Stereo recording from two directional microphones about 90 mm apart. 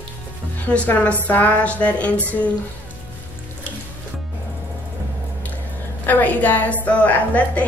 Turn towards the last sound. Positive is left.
turn(degrees=15)  # may be behind; listen again after turning